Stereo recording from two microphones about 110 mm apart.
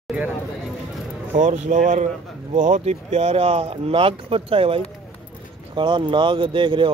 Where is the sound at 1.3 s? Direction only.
90° right; by 4.8 s 60° right (ahead or behind).